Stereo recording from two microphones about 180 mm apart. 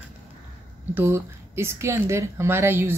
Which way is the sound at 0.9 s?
15° right (ahead or behind).